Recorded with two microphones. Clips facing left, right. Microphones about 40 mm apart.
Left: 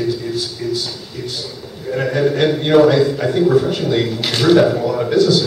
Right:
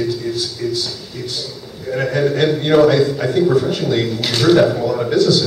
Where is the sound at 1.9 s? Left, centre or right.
Centre.